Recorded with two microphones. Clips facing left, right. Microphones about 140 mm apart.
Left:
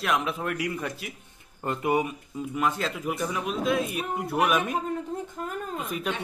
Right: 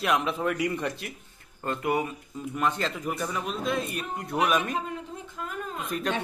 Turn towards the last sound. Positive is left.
turn(degrees=5)  # may be behind; listen again after turning